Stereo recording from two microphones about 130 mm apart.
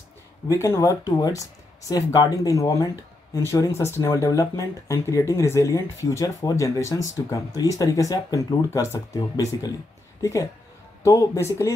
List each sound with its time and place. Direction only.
0.5 s speech: 20° left (ahead or behind)
11.1 s speech: 25° left (ahead or behind)